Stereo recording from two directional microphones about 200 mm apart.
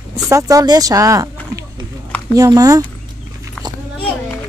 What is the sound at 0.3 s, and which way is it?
A woman's voice, 15° right (ahead or behind).